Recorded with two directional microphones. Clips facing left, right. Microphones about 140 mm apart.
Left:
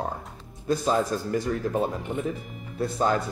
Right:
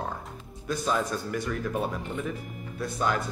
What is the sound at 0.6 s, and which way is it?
Speech, 30° left (ahead or behind).